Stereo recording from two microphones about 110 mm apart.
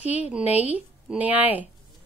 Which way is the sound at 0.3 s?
10° right (ahead or behind).